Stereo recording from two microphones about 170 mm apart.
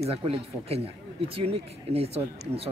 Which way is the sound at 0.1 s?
35° right (ahead or behind).